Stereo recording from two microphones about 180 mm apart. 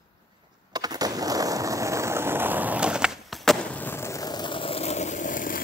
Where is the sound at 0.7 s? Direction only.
20° right (ahead or behind).